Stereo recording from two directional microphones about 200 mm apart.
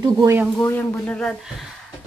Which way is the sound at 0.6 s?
15° left (ahead or behind).